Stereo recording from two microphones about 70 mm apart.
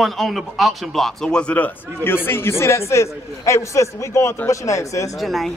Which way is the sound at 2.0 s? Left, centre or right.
Left.